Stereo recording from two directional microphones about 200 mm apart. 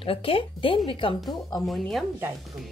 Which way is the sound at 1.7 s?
Centre (ahead or behind).